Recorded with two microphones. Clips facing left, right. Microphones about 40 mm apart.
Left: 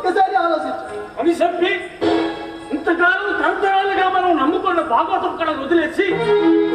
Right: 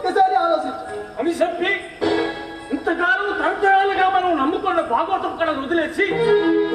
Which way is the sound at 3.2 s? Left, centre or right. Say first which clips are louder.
Left 2 dB; centre.